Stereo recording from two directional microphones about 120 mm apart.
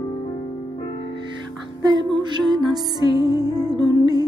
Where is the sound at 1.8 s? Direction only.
35° right (ahead or behind).